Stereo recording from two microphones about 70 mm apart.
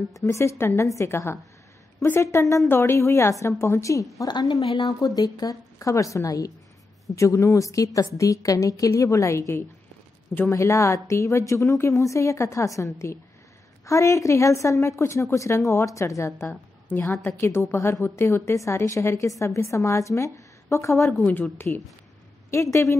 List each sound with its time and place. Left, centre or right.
0.3 s a woman's voice: left
4.3 s a woman's voice: left
16.4 s a woman's voice: left
21.2 s a woman's voice: left
22.5 s speech: left